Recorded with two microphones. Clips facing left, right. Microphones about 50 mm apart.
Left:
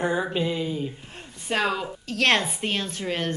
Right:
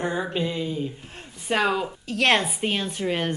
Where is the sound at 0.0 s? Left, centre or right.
Centre.